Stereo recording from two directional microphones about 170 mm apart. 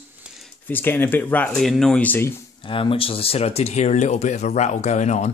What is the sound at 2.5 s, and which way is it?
Speech, 30° left (ahead or behind).